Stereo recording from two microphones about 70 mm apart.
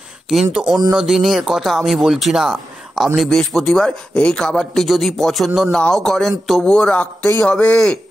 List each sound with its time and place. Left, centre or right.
0.3 s speech: centre
3.3 s speech: centre
6.6 s speech: centre